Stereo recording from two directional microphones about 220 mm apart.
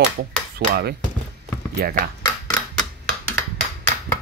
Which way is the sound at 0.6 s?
45° right (ahead or behind).